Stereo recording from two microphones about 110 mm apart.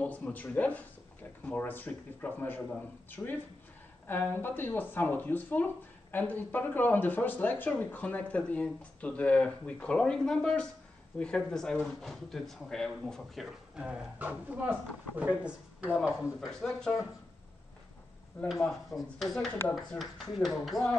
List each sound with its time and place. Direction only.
0.0 s speech: 15° left (ahead or behind); by 15.9 s 15° right (ahead or behind)
16.6 s speech: 5° left (ahead or behind)
18.5 s speech: centre (ahead or behind)